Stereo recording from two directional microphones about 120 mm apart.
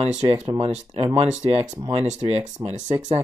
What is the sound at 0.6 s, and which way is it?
Speech, 50° right (ahead or behind).